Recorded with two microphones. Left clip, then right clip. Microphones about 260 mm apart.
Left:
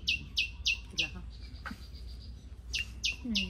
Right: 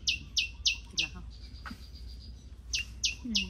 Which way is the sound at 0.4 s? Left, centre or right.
Centre.